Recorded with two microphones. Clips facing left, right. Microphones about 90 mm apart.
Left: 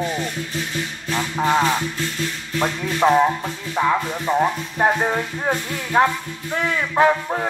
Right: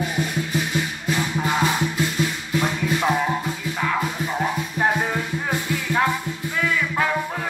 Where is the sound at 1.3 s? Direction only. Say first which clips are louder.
Left 8 dB; 30° left (ahead or behind).